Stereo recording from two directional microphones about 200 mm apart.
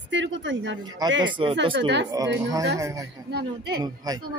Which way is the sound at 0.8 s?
20° right (ahead or behind).